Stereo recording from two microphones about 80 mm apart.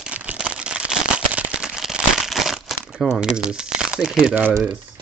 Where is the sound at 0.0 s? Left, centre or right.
Centre.